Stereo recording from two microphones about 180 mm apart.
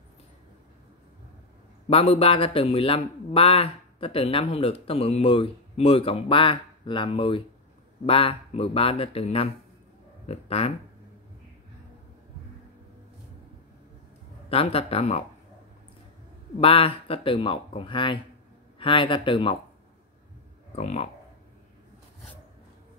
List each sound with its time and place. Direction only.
1.9 s a man's voice: 35° left (ahead or behind)
14.5 s a man's voice: 30° left (ahead or behind)
16.5 s a man's voice: 30° left (ahead or behind)
20.7 s a man's voice: 35° left (ahead or behind)